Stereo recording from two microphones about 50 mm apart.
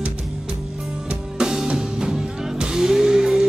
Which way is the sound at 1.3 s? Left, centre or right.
Centre.